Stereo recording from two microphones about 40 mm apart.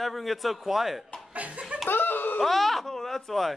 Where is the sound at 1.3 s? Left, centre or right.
Right.